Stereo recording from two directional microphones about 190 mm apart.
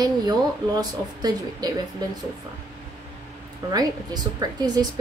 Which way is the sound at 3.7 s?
20° right (ahead or behind).